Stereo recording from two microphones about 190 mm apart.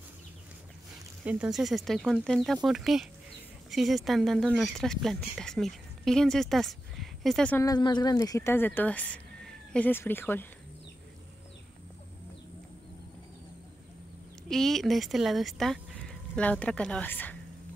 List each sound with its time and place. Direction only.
1.2 s speech: 5° right (ahead or behind)
7.6 s speech: 20° left (ahead or behind)
14.5 s speech: centre (ahead or behind)